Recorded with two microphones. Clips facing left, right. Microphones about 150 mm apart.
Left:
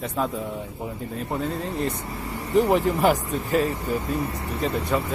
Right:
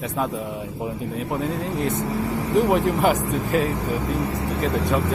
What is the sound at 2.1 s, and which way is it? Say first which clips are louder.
Vehicle: right 8 dB; 85° right.